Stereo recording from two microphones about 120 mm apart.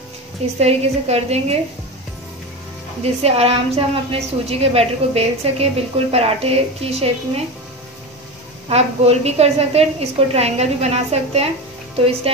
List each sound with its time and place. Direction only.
0.6 s a woman's voice: 60° right (ahead or behind)
3.0 s a woman's voice: 60° right (ahead or behind)
8.6 s a woman's voice: 60° right (ahead or behind)